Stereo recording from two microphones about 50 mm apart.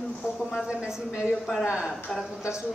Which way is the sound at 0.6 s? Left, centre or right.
Centre.